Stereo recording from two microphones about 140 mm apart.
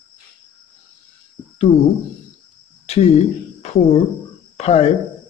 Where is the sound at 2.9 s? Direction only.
50° left (ahead or behind).